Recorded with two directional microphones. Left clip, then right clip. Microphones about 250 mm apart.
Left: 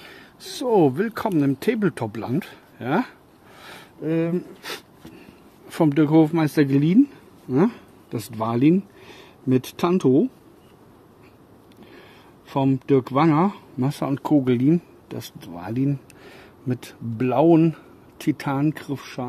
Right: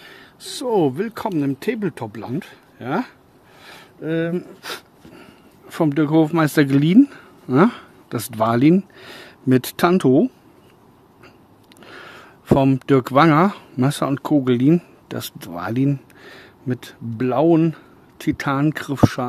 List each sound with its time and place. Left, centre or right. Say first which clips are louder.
0.0 s speech: right 2 dB; centre
4.0 s a sound: right 1 dB; centre
5.7 s speech: even; centre
6.3 s speech: right 3 dB; right
11.8 s speech: right 9 dB; right
16.2 s speech: right 3 dB; centre